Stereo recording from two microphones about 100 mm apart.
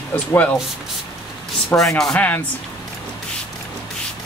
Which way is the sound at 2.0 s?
5° left (ahead or behind).